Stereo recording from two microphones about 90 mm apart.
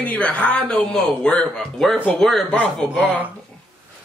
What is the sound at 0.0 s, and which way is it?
Speech, 15° left (ahead or behind).